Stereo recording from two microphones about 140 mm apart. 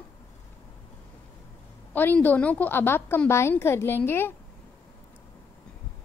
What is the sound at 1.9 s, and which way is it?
A woman's voice, 10° left (ahead or behind).